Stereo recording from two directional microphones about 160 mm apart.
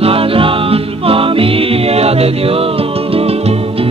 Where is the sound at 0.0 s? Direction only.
35° right (ahead or behind).